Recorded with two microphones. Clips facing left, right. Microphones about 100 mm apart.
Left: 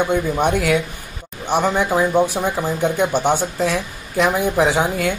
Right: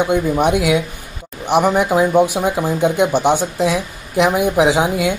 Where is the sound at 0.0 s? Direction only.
15° right (ahead or behind).